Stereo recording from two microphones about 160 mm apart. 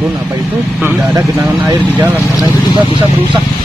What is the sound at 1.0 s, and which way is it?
Speech, 20° right (ahead or behind).